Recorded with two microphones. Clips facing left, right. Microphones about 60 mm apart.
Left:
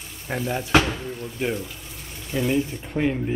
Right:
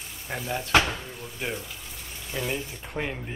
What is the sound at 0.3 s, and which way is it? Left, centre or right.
Speech, centre.